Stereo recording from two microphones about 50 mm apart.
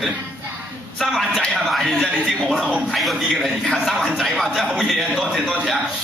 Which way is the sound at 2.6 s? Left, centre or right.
Centre.